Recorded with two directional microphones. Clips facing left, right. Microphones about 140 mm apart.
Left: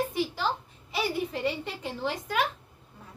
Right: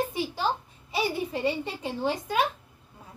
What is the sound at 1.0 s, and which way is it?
Speech, 20° right (ahead or behind).